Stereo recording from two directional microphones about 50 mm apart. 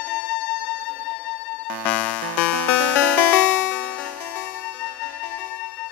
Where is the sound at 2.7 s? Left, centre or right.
Left.